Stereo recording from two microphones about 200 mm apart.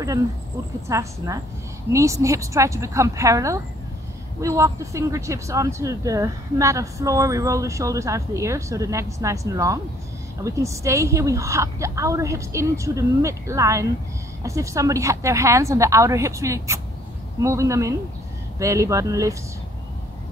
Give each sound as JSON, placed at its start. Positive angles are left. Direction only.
{"t": 0.8, "sound": "speech", "side_deg": -15}